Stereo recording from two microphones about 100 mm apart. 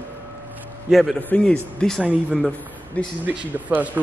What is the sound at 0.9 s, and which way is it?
Speech, centre (ahead or behind).